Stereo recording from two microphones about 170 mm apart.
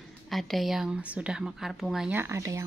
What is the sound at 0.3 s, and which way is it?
Speech, centre (ahead or behind).